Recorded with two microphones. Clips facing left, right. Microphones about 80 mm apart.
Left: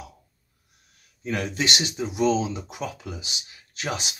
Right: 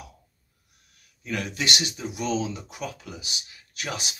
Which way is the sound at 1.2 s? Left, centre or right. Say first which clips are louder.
Left 3 dB; left.